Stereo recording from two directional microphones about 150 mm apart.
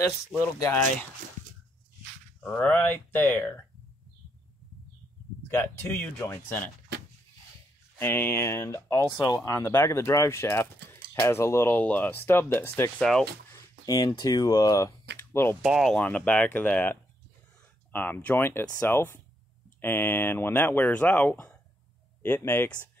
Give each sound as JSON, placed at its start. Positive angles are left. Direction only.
{"t": 0.4, "sound": "speech", "side_deg": 20}
{"t": 2.4, "sound": "speech", "side_deg": 10}
{"t": 5.5, "sound": "speech", "side_deg": 15}
{"t": 8.0, "sound": "speech", "side_deg": 15}
{"t": 13.0, "sound": "speech", "side_deg": 5}
{"t": 13.5, "sound": "speech", "side_deg": 25}
{"t": 15.6, "sound": "speech", "side_deg": -5}
{"t": 16.0, "sound": "speech", "side_deg": 10}